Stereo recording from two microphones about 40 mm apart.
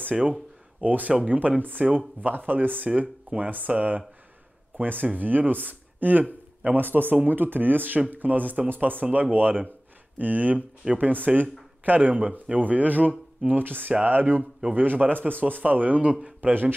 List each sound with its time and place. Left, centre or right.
0.8 s speech: right
4.7 s speech: right
13.5 s a man's voice: right